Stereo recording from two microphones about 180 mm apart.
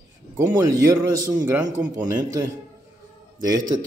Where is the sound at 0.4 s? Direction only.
15° right (ahead or behind).